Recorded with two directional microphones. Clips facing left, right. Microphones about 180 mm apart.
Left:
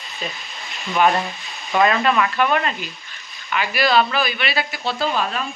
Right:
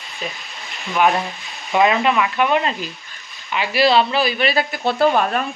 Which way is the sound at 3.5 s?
30° right (ahead or behind).